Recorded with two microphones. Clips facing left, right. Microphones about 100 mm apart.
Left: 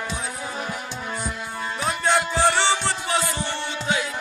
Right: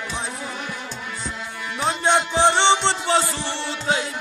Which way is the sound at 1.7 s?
25° right (ahead or behind).